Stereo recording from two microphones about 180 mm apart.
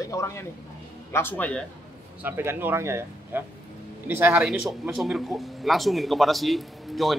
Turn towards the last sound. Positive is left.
turn(degrees=0)  # may be behind; listen again after turning